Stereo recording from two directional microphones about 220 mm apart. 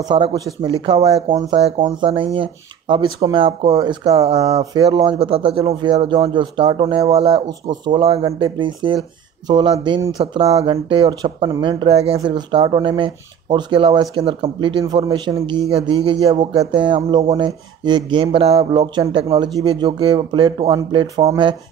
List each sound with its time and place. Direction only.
0.1 s speech: 20° right (ahead or behind)